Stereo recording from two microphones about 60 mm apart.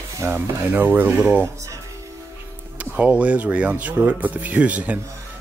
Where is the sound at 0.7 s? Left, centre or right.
Right.